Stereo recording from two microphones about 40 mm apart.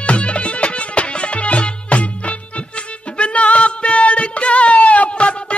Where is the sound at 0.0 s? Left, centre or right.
Left.